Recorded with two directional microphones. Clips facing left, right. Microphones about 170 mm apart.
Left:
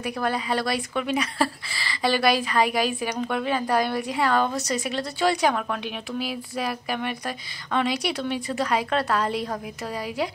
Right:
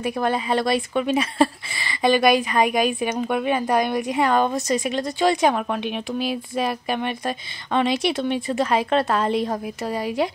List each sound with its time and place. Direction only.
0.0 s a woman's voice: 25° right (ahead or behind)